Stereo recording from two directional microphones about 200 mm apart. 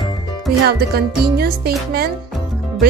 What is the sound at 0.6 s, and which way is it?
Music, 50° right (ahead or behind).